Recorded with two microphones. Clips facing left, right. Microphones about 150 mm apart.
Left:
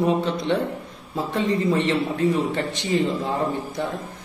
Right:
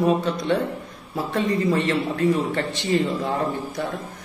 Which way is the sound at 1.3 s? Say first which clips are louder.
Even; 20° left (ahead or behind).